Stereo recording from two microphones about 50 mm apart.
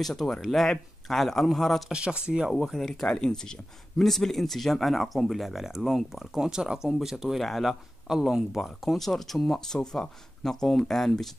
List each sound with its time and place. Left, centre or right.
0.0 s speech: centre
1.9 s speech: right
2.5 s speech: centre
2.9 s speech: centre